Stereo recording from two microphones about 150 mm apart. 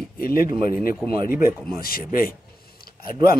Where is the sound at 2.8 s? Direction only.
80° left.